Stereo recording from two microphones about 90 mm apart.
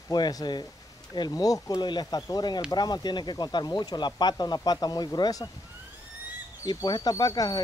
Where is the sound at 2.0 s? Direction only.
40° left (ahead or behind).